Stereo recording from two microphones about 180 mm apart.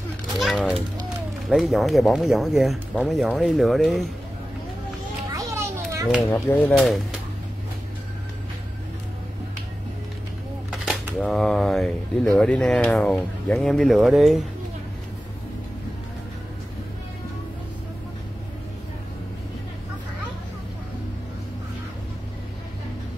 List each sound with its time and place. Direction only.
0.4 s a sound: centre (ahead or behind)
1.5 s speech: centre (ahead or behind)
5.3 s children playing: 15° right (ahead or behind)
6.2 s speech: 10° left (ahead or behind)
6.7 s speech: centre (ahead or behind)
10.7 s speech: 5° right (ahead or behind)